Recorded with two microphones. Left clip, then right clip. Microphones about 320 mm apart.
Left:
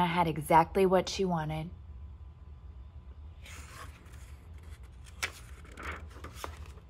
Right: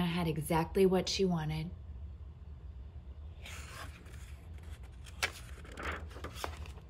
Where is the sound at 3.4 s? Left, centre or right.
Centre.